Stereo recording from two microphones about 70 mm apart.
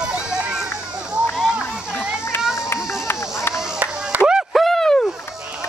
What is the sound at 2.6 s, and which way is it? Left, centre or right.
Run, left.